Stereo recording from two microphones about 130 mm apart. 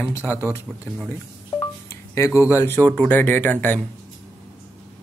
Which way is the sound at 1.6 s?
20° left (ahead or behind).